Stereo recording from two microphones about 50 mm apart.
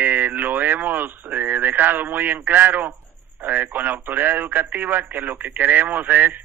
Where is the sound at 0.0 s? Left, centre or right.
Right.